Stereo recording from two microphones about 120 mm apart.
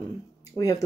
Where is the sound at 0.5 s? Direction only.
30° left (ahead or behind).